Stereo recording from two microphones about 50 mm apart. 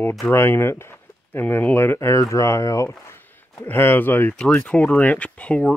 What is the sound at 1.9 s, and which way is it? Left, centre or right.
Speech, left.